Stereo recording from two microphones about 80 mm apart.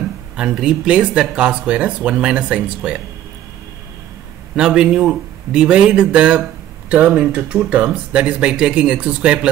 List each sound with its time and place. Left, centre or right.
0.4 s speech: centre
4.6 s speech: centre